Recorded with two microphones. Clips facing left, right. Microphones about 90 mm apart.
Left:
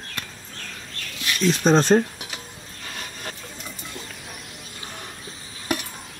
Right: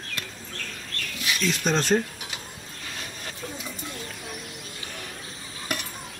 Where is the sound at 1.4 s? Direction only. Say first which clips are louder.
Left 8 dB; 35° left (ahead or behind).